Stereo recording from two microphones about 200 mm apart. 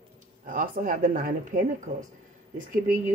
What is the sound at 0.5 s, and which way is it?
Speech, 45° right (ahead or behind).